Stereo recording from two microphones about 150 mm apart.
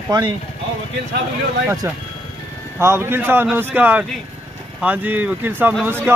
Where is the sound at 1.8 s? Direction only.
20° right (ahead or behind).